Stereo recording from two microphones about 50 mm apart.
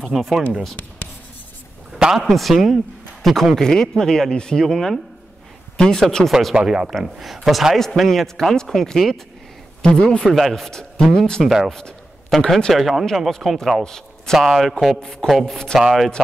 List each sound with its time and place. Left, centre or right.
0.0 s speech: centre
2.2 s a man's voice: centre
6.5 s a man's voice: centre
10.3 s a man's voice: centre
11.4 s speech: centre
11.7 s a man's voice: centre
12.7 s speech: centre
13.8 s a man's voice: centre
14.4 s a man's voice: centre